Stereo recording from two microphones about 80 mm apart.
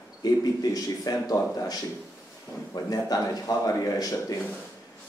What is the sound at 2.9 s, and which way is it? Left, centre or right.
Speech, left.